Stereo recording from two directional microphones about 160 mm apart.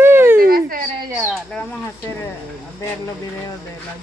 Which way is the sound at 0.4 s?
60° right (ahead or behind).